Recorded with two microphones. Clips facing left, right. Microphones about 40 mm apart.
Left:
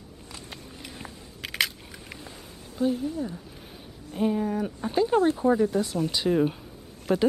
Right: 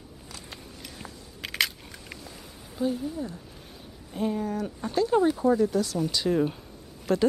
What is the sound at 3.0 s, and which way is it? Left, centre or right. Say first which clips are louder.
Speech: left 2 dB; centre.